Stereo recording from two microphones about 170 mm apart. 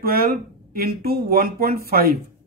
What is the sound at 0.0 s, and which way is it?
Speech, 60° right (ahead or behind).